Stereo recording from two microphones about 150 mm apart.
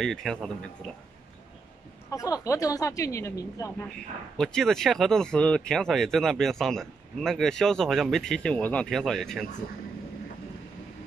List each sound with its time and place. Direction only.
0.0 s speech: 5° left (ahead or behind)
2.0 s speech: 20° left (ahead or behind)
4.4 s speech: 5° left (ahead or behind)